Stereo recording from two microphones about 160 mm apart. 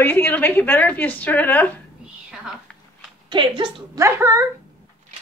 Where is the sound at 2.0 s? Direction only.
5° right (ahead or behind).